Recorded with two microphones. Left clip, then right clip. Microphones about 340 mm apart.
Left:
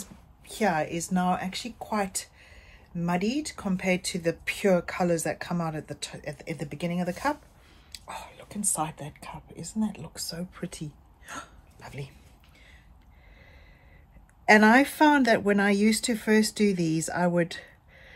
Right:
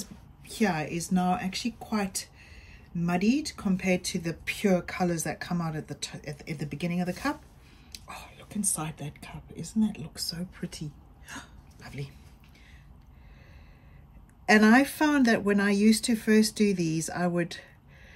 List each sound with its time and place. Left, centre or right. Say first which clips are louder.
0.0 s speech: right 2 dB; centre
11.2 s hiccup: left 3 dB; centre
14.4 s speech: left 3 dB; centre